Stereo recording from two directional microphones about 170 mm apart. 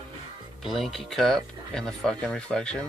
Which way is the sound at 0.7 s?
Centre (ahead or behind).